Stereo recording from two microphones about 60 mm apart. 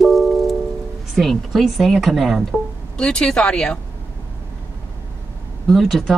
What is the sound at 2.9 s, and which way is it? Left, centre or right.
Speech, centre.